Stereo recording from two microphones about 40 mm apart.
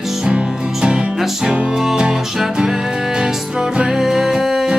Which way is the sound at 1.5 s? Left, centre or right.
Right.